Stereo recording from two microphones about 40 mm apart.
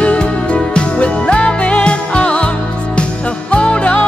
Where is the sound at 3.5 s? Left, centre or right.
Left.